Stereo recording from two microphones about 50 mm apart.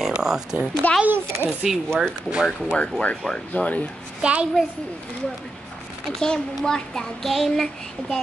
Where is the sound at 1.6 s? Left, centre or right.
Centre.